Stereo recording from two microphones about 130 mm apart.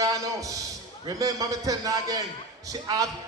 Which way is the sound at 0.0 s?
25° right (ahead or behind).